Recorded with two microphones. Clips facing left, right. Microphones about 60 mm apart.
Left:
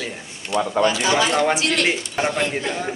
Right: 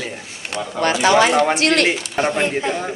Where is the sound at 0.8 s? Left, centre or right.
Right.